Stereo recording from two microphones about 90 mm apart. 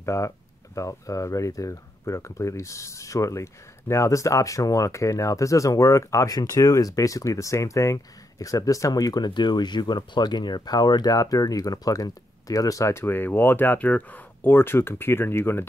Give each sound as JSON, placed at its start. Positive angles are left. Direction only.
{"t": 0.0, "sound": "speech", "side_deg": 35}